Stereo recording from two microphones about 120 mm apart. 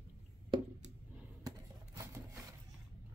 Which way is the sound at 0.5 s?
40° right (ahead or behind).